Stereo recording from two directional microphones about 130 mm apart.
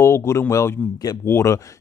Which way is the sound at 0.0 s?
20° left (ahead or behind).